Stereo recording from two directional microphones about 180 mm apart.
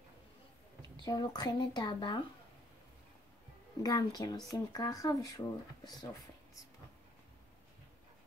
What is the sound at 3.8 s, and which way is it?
Speech, 20° left (ahead or behind).